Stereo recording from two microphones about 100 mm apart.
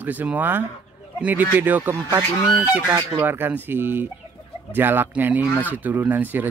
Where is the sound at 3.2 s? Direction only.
20° right (ahead or behind).